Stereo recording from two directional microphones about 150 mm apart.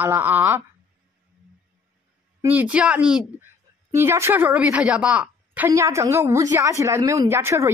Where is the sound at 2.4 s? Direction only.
10° right (ahead or behind).